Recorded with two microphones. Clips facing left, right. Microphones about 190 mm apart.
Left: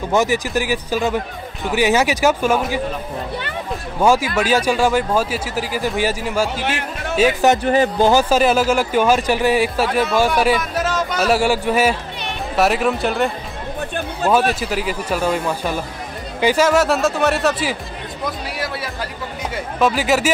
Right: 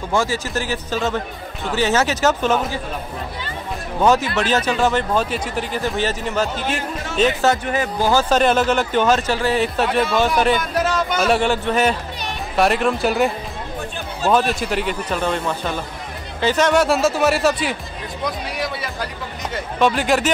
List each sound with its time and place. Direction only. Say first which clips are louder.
0.1 s speech: left 3 dB; 20° left (ahead or behind)
4.0 s speech: left 1 dB; 10° left (ahead or behind)
7.5 s speech: left 6 dB; 30° left (ahead or behind)
8.1 s speech: left 2 dB; 10° left (ahead or behind)